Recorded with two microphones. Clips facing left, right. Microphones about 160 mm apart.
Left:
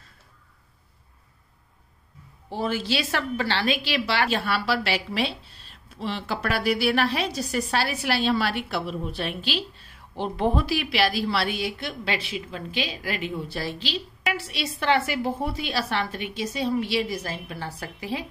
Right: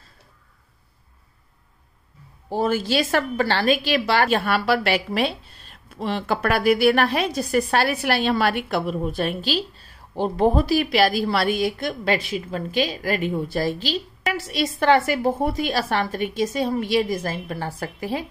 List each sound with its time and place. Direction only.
2.5 s a woman's voice: 45° right (ahead or behind)